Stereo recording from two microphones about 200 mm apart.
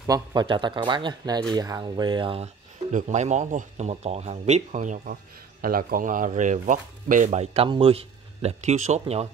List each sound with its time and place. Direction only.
0.0 s a man's voice: 20° right (ahead or behind)